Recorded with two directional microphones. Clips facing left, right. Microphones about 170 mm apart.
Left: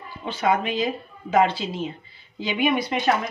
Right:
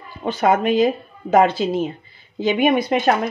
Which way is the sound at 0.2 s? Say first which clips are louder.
Right 5 dB; 45° right (ahead or behind).